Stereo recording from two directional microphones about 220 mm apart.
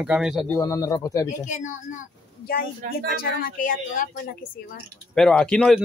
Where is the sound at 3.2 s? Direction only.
40° left (ahead or behind).